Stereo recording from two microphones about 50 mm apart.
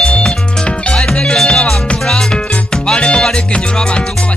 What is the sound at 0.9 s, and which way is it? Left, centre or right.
Music, centre.